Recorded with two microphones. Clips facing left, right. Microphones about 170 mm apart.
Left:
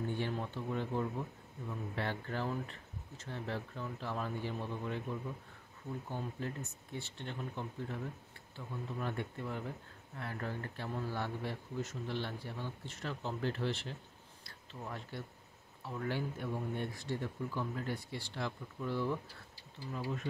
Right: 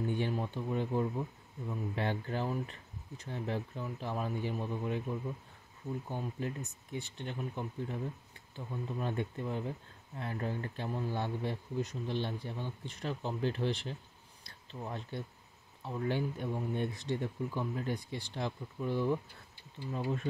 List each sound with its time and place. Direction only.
0.0 s speech: 15° right (ahead or behind)
6.0 s speech: 15° right (ahead or behind)
19.9 s speech: 30° right (ahead or behind)